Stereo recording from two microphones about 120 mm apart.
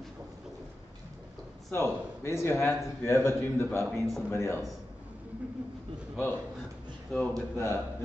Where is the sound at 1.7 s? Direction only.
20° left (ahead or behind).